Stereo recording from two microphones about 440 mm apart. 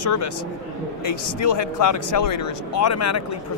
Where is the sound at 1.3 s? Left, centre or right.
Left.